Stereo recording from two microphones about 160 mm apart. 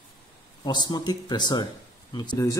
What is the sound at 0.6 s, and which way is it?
Speech, 25° left (ahead or behind).